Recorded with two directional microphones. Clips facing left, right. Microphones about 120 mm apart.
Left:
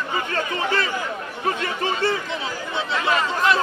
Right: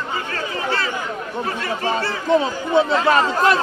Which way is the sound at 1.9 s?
45° right (ahead or behind).